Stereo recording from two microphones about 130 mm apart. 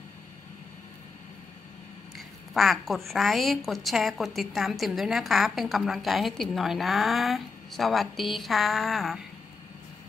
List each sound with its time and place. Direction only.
2.1 s a woman's voice: centre (ahead or behind)